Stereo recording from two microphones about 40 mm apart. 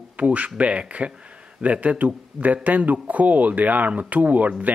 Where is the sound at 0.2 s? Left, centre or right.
Right.